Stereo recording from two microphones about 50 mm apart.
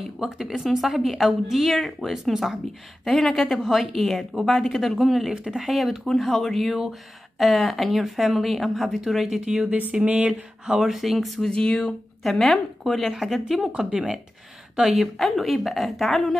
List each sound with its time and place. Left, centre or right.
0.2 s speech: centre
3.1 s speech: centre
5.7 s speech: centre
9.4 s speech: centre
10.9 s speech: centre
11.5 s speech: centre
12.2 s speech: centre
13.7 s speech: right
14.8 s speech: centre